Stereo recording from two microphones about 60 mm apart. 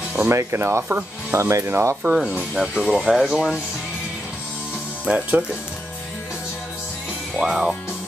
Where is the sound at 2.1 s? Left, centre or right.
Centre.